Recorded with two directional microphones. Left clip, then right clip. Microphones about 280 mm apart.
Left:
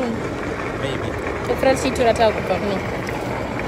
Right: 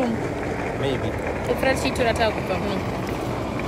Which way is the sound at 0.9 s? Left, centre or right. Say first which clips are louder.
Left 1 dB; left.